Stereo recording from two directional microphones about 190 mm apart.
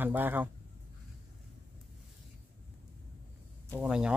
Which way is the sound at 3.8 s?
5° right (ahead or behind).